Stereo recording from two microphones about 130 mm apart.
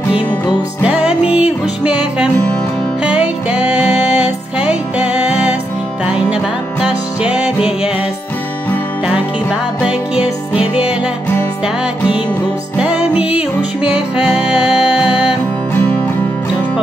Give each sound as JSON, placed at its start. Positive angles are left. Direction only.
{"t": 0.8, "sound": "music", "side_deg": -10}
{"t": 9.0, "sound": "music", "side_deg": -10}
{"t": 12.7, "sound": "music", "side_deg": -10}
{"t": 15.7, "sound": "music", "side_deg": 15}